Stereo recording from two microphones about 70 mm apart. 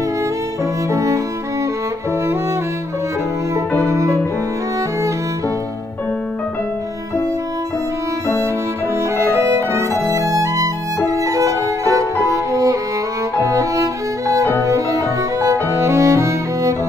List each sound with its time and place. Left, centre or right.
0.9 s music: right
3.9 s music: right
8.9 s music: right
11.1 s violin: right
12.2 s music: right
13.4 s violin: right
14.6 s music: right